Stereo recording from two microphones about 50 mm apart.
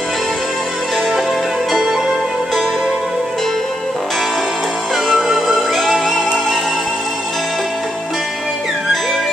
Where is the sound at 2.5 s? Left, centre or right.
Centre.